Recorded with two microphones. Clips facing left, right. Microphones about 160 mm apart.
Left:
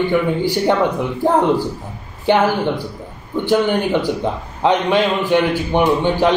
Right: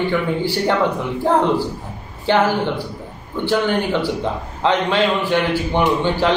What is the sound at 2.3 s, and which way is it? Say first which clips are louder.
Speech: left 2 dB; 15° left (ahead or behind).